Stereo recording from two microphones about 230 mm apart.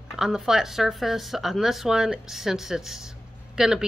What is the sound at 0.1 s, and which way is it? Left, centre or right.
Speech, centre.